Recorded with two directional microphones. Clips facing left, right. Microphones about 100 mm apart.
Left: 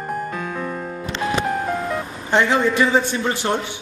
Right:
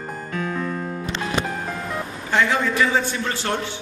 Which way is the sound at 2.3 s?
20° left (ahead or behind).